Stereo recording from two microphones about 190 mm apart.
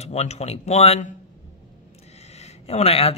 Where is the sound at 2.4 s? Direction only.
35° left (ahead or behind).